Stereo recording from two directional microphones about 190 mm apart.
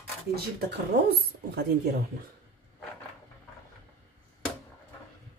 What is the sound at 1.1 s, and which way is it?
Speech, 55° right (ahead or behind).